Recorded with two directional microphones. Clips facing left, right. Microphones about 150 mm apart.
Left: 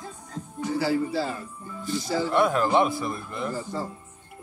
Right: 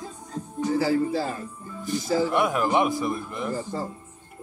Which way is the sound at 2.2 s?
15° right (ahead or behind).